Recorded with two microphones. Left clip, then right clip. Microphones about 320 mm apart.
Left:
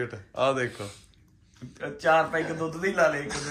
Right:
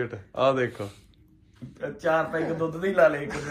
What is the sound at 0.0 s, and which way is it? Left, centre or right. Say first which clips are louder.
Speech: right 2 dB; centre.